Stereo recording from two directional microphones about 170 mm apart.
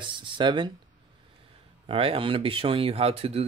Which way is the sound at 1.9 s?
30° right (ahead or behind).